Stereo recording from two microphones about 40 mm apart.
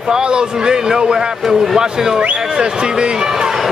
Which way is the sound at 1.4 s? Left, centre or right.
Centre.